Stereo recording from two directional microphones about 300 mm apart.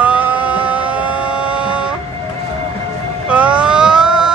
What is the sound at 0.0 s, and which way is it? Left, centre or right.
Music, centre.